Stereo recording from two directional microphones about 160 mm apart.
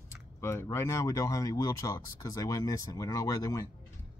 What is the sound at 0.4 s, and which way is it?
Speech, 15° left (ahead or behind).